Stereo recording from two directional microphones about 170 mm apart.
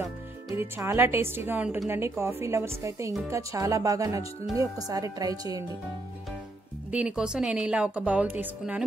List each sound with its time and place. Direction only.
0.6 s a woman's voice: 15° right (ahead or behind)
6.9 s a woman's voice: 5° right (ahead or behind)